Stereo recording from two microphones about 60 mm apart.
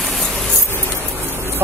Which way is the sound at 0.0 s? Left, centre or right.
Centre.